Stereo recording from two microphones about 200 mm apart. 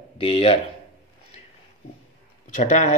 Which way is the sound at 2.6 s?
35° left (ahead or behind).